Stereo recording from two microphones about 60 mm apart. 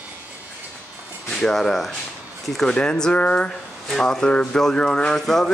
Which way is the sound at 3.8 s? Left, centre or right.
Centre.